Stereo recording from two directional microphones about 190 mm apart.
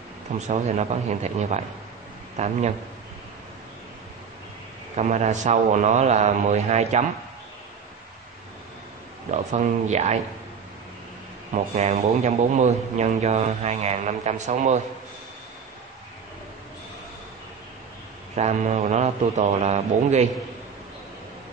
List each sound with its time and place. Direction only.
0.5 s speech: 35° right (ahead or behind)
4.9 s speech: 35° right (ahead or behind)
9.3 s speech: 35° right (ahead or behind)
11.5 s speech: 35° right (ahead or behind)
18.3 s speech: 35° right (ahead or behind)